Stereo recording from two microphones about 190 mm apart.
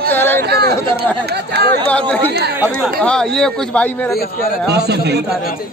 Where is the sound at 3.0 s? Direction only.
5° left (ahead or behind).